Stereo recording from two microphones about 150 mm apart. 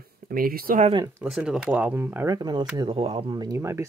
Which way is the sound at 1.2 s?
5° right (ahead or behind).